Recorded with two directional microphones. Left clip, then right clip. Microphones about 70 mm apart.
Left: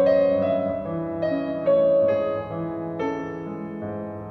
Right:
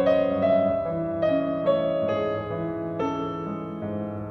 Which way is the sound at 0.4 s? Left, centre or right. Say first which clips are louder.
Right 2 dB; right.